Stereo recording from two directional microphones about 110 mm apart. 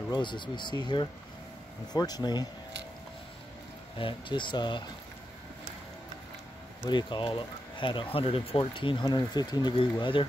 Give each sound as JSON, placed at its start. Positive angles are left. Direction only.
{"t": 0.1, "sound": "speech", "side_deg": 45}
{"t": 4.0, "sound": "speech", "side_deg": 45}
{"t": 6.9, "sound": "speech", "side_deg": 45}